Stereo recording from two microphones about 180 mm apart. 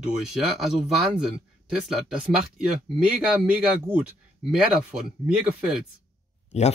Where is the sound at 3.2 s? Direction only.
5° right (ahead or behind).